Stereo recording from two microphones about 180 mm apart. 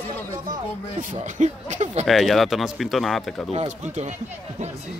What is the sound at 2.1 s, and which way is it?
Speech, centre (ahead or behind).